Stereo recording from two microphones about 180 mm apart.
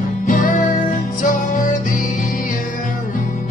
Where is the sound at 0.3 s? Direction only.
50° left (ahead or behind).